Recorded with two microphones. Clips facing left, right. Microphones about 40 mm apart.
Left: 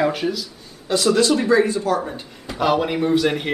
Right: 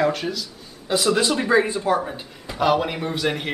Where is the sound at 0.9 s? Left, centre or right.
Centre.